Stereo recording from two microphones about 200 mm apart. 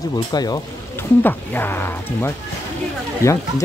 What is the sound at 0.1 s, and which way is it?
Speech, 20° left (ahead or behind).